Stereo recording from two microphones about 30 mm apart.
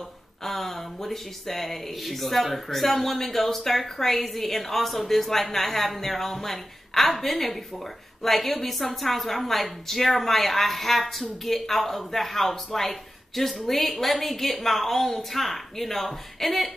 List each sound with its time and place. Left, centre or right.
0.4 s speech: centre